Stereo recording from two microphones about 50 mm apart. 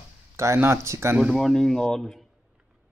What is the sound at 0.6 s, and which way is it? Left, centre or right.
Speech, right.